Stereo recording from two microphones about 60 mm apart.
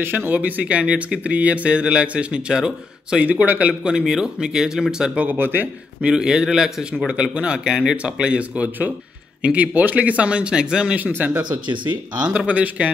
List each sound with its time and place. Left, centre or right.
0.0 s a man's voice: right
0.3 s speech: right
3.2 s speech: right
3.9 s speech: centre
5.2 s a man's voice: right
6.0 s speech: centre
11.0 s a man's voice: right
12.4 s speech: right